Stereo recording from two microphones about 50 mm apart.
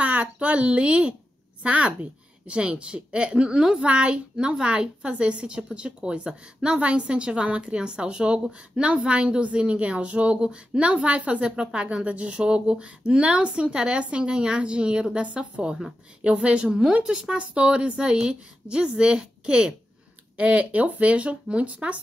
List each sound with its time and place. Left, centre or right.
0.0 s a child's voice: right